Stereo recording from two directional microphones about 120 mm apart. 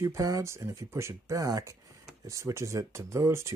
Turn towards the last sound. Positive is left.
turn(degrees=-25)  # may be behind; listen again after turning